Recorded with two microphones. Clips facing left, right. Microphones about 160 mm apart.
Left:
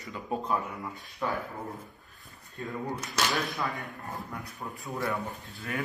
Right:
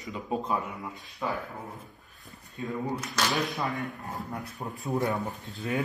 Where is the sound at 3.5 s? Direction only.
20° right (ahead or behind).